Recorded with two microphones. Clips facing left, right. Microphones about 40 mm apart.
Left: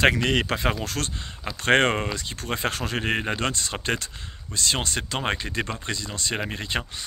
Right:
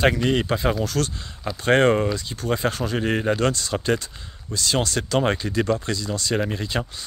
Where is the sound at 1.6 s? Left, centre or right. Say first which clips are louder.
Right 3 dB; left.